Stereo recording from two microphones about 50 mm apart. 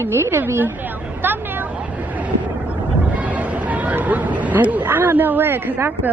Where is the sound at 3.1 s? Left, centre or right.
Right.